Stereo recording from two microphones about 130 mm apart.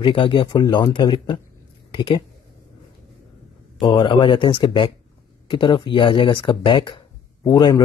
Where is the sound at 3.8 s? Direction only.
40° left (ahead or behind).